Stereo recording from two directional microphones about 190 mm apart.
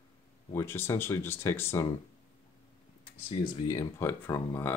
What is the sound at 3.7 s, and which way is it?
Speech, 15° left (ahead or behind).